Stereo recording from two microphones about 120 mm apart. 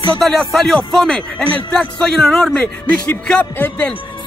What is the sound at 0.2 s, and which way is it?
Speech, centre (ahead or behind).